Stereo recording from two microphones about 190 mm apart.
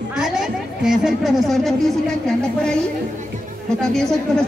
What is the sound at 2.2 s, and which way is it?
Speech, 5° left (ahead or behind).